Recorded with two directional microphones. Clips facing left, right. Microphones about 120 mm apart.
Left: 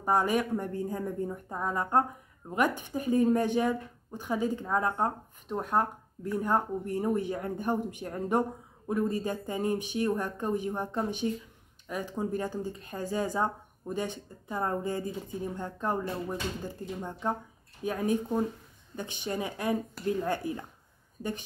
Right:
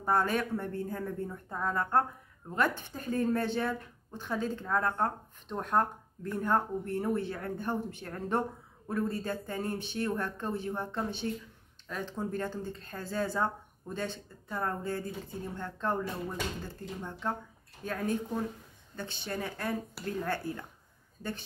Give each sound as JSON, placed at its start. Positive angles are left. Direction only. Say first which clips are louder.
{"t": 0.0, "sound": "speech", "louder": "left 2 dB", "side_deg": 15}